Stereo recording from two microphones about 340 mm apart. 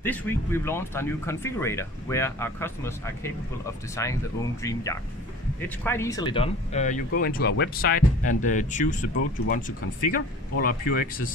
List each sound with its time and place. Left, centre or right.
0.0 s speech: centre; by 11.3 s left